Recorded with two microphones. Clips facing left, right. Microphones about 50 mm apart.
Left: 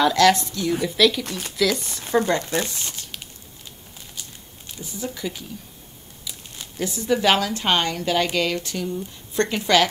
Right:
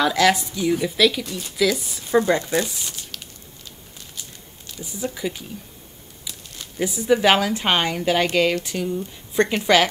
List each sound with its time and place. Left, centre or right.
0.0 s a woman's voice: centre
1.2 s speech: left
1.6 s speech: centre
2.1 s speech: right
5.0 s a woman's voice: centre
6.8 s a woman's voice: centre